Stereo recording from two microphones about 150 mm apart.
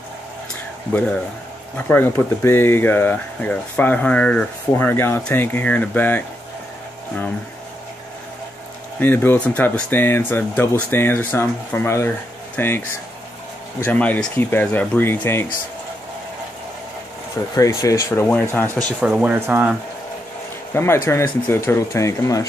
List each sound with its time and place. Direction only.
0.9 s speech: 10° left (ahead or behind)
9.0 s speech: 15° left (ahead or behind)
17.6 s speech: 20° left (ahead or behind)
18.9 s speech: 5° right (ahead or behind)
20.7 s speech: 15° left (ahead or behind)